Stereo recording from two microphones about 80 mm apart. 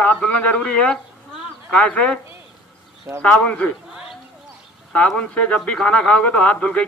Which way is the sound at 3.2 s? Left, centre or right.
Centre.